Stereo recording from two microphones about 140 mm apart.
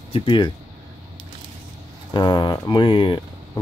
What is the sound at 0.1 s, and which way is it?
Speech, 40° left (ahead or behind).